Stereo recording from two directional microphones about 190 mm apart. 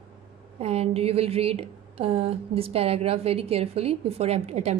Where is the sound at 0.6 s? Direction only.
30° right (ahead or behind).